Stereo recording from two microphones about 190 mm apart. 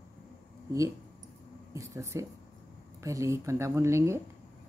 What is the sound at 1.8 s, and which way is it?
Speech, 15° right (ahead or behind).